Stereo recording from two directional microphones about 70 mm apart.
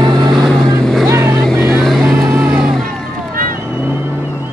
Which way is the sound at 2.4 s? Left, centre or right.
Centre.